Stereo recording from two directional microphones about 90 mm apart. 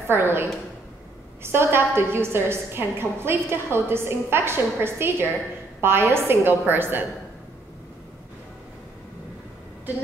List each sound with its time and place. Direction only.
0.1 s a woman's voice: 25° right (ahead or behind)